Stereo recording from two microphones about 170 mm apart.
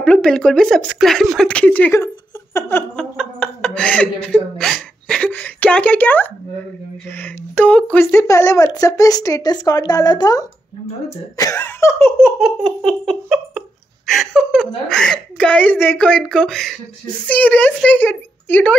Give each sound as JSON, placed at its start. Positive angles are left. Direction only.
{"t": 0.0, "sound": "speech", "side_deg": 5}
{"t": 3.2, "sound": "a sound", "side_deg": 5}
{"t": 7.1, "sound": "speech", "side_deg": 10}
{"t": 12.4, "sound": "laughter", "side_deg": 0}
{"t": 15.0, "sound": "speech", "side_deg": 5}